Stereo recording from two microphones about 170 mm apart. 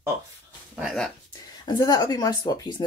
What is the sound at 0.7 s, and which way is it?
Speech, centre (ahead or behind).